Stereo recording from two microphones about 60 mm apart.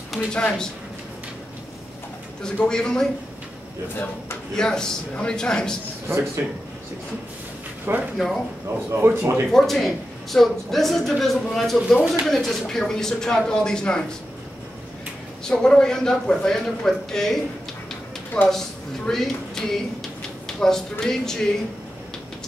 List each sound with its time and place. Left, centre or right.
0.3 s a man's voice: centre
2.6 s a man's voice: centre
4.6 s a man's voice: centre
6.0 s speech: right
7.9 s speech: right
9.5 s a woman's voice: centre
15.4 s a man's voice: centre
20.4 s a sound: centre
21.0 s a man's voice: centre